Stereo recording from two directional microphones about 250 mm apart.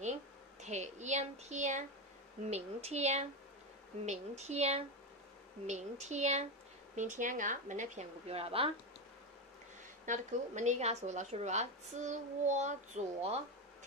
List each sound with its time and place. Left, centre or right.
0.6 s a woman's voice: right
10.0 s a woman's voice: right